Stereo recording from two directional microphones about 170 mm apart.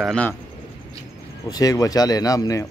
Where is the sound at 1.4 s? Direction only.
20° left (ahead or behind).